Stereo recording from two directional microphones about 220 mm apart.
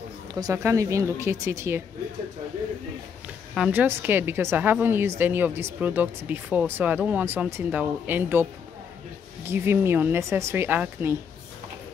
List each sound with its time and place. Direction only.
0.3 s a woman's voice: 15° right (ahead or behind)
3.5 s a woman's voice: 5° right (ahead or behind)